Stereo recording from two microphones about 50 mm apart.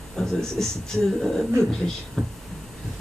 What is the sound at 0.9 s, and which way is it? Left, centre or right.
Speech, centre.